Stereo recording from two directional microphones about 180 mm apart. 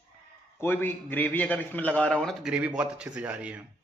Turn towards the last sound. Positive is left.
turn(degrees=-5)  # may be behind; listen again after turning